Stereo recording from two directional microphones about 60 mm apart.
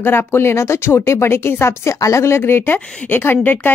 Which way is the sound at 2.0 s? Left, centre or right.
Left.